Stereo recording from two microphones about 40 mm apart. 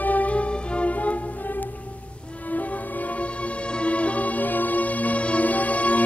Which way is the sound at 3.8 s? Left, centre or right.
Left.